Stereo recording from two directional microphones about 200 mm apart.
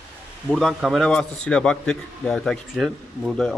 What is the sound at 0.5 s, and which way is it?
A man's voice, centre (ahead or behind).